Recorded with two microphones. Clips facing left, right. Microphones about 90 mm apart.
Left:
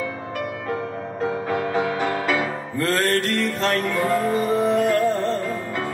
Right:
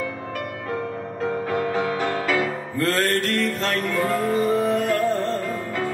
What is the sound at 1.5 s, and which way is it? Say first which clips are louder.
Music: left 1 dB; 15° left (ahead or behind).